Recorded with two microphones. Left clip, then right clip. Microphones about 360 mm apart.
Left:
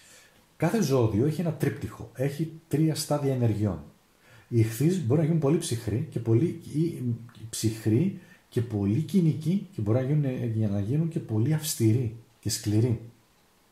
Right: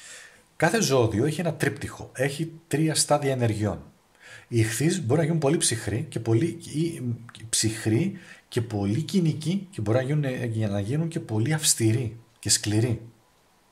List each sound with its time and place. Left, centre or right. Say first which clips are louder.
0.6 s speech: right 4 dB; right